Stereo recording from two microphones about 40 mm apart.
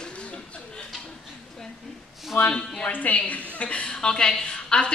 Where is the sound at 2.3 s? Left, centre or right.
Left.